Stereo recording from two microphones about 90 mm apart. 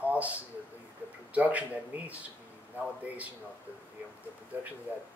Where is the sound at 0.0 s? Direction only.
15° right (ahead or behind).